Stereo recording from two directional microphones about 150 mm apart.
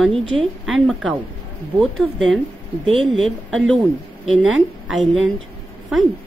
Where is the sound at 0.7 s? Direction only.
Centre (ahead or behind).